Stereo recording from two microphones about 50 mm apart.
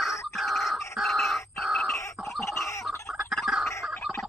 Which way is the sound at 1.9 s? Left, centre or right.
Left.